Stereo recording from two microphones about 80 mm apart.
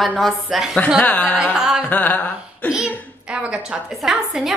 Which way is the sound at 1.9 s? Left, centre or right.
Centre.